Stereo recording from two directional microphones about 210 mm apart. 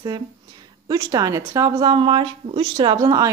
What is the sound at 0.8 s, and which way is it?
A woman's voice, 20° right (ahead or behind).